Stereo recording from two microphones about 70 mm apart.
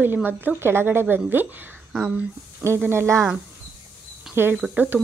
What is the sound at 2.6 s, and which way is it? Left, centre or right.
Speech, right.